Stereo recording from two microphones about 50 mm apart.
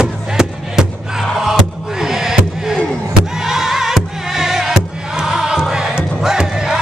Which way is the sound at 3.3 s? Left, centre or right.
Centre.